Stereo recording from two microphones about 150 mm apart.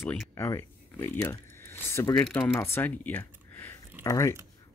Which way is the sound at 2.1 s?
5° left (ahead or behind).